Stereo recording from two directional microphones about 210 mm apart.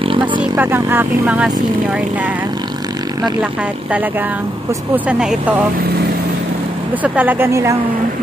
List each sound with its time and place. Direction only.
0.0 s vehicle: 25° right (ahead or behind)
0.4 s speech: 10° right (ahead or behind)
4.9 s speech: 5° right (ahead or behind)
7.0 s speech: 10° right (ahead or behind)